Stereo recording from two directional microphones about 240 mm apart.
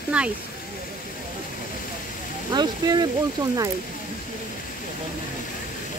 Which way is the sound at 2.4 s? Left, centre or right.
Centre.